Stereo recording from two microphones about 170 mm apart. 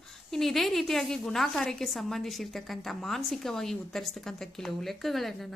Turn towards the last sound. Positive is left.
turn(degrees=0)  # may be behind; listen again after turning